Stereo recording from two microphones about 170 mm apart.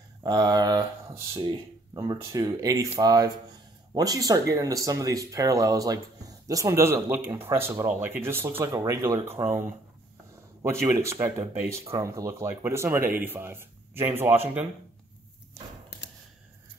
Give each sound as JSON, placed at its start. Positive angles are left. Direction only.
{"t": 0.2, "sound": "speech", "side_deg": -25}
{"t": 10.6, "sound": "speech", "side_deg": -15}